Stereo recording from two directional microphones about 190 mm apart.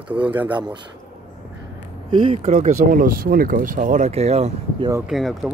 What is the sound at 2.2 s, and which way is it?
Speech, 30° right (ahead or behind).